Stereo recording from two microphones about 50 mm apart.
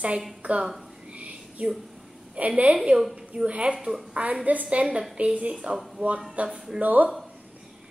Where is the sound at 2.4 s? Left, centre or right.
Right.